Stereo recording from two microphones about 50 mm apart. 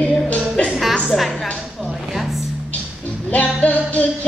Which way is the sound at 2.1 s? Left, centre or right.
Centre.